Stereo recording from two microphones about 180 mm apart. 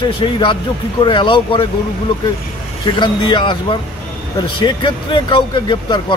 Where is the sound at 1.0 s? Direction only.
25° left (ahead or behind).